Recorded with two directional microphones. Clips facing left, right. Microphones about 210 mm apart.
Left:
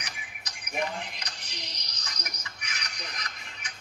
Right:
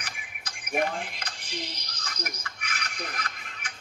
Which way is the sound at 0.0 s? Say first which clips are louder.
Right 1 dB; 55° right (ahead or behind).